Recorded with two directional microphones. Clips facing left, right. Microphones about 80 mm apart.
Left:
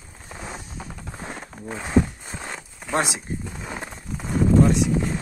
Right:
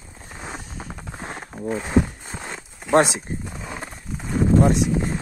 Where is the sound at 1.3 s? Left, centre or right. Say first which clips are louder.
Right 7 dB; right.